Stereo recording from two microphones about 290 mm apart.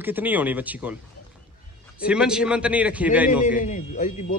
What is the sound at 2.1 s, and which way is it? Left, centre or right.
A man's voice, centre.